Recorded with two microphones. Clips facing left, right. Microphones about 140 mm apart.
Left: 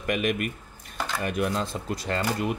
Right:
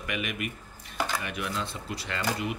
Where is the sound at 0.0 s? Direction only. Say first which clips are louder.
Left 7 dB; 45° left (ahead or behind).